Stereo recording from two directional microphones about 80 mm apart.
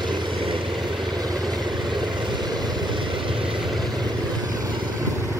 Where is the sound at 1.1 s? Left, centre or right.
Right.